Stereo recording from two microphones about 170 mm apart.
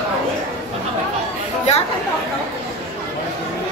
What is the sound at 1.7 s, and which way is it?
Speech, 40° left (ahead or behind).